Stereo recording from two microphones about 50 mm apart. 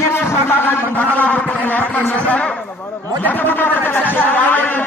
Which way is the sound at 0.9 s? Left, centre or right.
Left.